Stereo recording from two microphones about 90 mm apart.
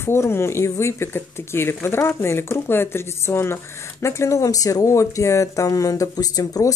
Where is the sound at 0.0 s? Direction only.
30° left (ahead or behind).